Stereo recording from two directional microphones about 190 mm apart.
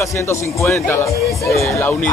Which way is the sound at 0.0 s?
15° left (ahead or behind).